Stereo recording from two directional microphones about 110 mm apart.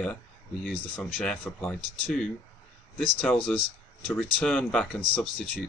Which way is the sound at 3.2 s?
Centre (ahead or behind).